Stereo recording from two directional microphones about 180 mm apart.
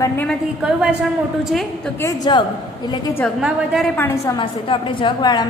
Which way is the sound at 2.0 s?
20° left (ahead or behind).